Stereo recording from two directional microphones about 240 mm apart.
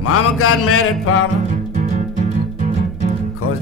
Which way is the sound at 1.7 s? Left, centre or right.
Right.